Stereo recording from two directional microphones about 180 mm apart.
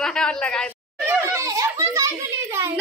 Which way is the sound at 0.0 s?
5° left (ahead or behind).